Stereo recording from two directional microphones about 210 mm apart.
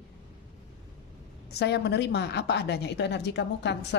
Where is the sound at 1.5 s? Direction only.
55° left (ahead or behind).